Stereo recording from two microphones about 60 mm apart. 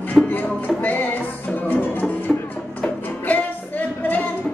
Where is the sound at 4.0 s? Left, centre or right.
Left.